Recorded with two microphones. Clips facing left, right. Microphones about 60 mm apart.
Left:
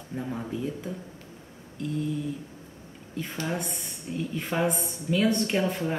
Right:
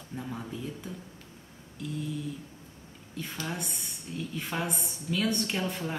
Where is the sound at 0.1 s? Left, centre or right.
Centre.